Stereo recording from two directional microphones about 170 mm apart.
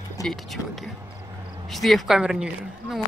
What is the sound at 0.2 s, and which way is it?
Speech, centre (ahead or behind).